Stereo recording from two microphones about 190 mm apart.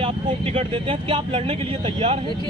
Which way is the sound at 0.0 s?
30° right (ahead or behind).